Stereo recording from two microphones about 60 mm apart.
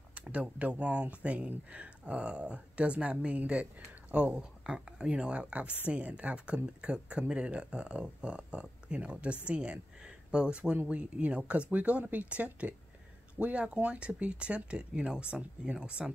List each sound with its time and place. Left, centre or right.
0.1 s speech: centre